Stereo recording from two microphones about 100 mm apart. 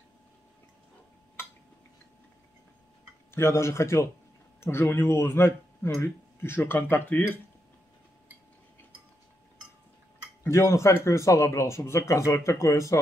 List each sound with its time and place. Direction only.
3.3 s speech: 25° left (ahead or behind)
10.4 s speech: 25° left (ahead or behind)